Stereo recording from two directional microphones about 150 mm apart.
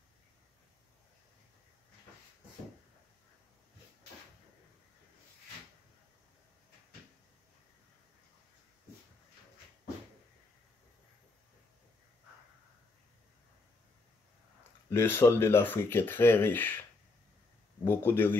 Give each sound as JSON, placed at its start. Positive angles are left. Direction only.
{"t": 14.9, "sound": "speech", "side_deg": 15}
{"t": 17.8, "sound": "speech", "side_deg": 15}